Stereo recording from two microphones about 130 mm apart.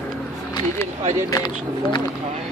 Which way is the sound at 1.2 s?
25° left (ahead or behind).